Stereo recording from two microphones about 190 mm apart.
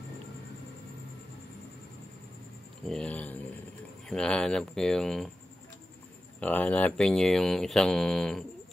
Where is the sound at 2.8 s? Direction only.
5° left (ahead or behind).